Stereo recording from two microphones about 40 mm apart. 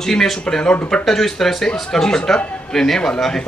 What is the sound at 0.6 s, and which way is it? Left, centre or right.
Speech, left.